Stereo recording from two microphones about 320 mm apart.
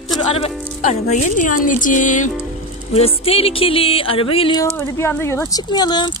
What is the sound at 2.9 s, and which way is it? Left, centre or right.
Music, centre.